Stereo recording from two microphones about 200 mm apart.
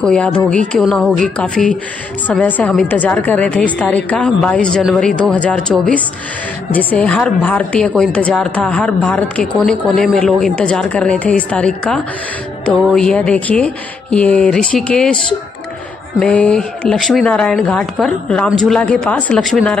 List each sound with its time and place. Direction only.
0.0 s speech: 5° left (ahead or behind)